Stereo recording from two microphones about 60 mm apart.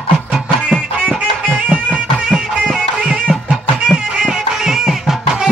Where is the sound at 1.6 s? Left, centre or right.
Right.